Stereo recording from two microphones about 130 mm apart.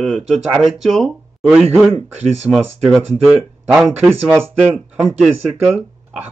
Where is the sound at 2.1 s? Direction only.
60° right (ahead or behind).